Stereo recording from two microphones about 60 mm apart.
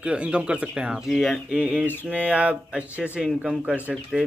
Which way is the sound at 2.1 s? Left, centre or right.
Right.